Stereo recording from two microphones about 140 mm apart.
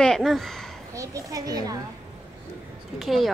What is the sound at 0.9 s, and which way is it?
Children playing, 25° right (ahead or behind).